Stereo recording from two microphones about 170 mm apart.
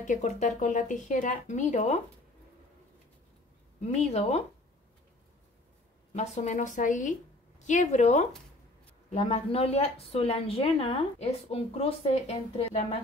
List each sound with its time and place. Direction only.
0.0 s speech: 50° left (ahead or behind)
3.8 s a woman's voice: 40° left (ahead or behind)
6.1 s a woman's voice: 45° left (ahead or behind)